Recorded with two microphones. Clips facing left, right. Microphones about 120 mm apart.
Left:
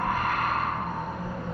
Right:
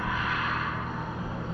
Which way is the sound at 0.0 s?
50° left (ahead or behind).